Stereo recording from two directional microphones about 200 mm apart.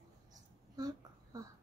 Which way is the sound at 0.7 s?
20° right (ahead or behind).